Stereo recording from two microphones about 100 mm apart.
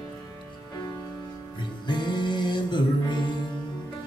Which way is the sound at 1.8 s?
50° left (ahead or behind).